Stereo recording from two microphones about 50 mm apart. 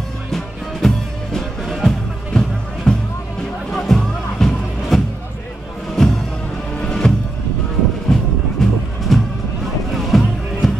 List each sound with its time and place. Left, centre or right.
0.3 s music: centre
8.1 s music: centre